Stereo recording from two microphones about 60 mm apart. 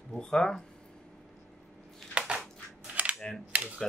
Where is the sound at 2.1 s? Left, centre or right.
Centre.